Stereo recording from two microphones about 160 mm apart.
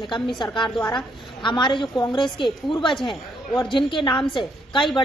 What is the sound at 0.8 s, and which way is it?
A woman's voice, 30° left (ahead or behind).